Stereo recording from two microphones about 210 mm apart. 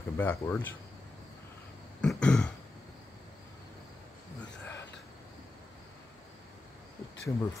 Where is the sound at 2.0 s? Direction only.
5° left (ahead or behind).